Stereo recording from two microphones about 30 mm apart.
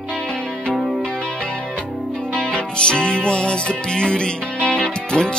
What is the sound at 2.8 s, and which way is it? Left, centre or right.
Music, left.